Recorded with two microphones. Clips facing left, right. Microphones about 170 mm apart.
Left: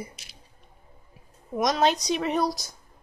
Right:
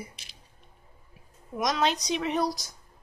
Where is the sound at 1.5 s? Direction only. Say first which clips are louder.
Left 4 dB; 40° left (ahead or behind).